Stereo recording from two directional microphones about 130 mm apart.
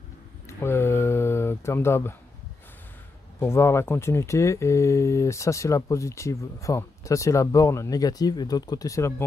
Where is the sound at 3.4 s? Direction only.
20° left (ahead or behind).